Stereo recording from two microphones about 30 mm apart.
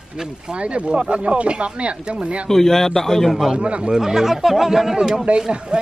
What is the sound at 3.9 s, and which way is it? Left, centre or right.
Speech, centre.